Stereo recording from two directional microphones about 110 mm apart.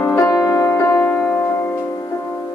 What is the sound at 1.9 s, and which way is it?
Music, 30° left (ahead or behind).